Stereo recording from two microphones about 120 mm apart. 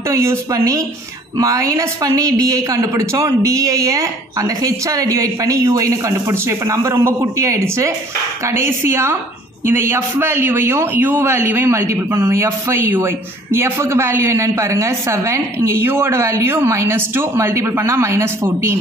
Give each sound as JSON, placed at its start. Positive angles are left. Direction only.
{"t": 0.1, "sound": "a man's voice", "side_deg": -25}